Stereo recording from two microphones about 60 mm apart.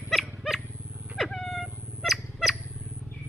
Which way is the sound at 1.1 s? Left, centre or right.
Centre.